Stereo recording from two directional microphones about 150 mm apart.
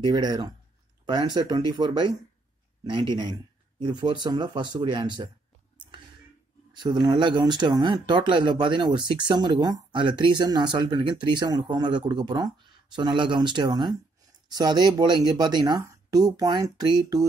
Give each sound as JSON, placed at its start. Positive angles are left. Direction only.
{"t": 0.0, "sound": "speech", "side_deg": -25}
{"t": 6.7, "sound": "speech", "side_deg": -30}